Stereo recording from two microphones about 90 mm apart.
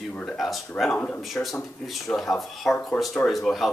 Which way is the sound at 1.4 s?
15° left (ahead or behind).